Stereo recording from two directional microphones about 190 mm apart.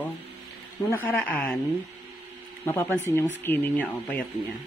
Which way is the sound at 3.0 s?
10° left (ahead or behind).